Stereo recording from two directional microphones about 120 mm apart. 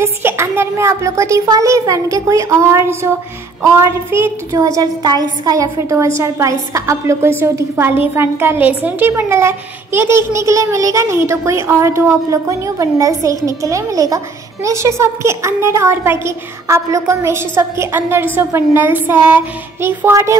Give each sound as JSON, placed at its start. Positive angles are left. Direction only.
{"t": 0.0, "sound": "a woman's voice", "side_deg": -20}